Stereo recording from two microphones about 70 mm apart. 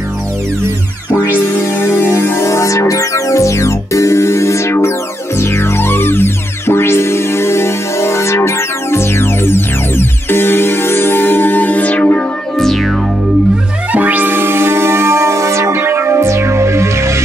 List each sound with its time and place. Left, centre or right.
1.6 s music: left
12.5 s music: centre
13.9 s music: right